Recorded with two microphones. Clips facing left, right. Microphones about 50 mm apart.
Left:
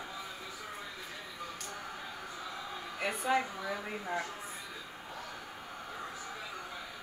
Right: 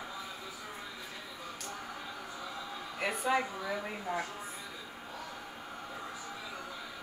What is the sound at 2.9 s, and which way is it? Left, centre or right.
Speech, centre.